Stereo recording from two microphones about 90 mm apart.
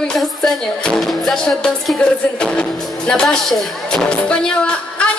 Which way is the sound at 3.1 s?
5° left (ahead or behind).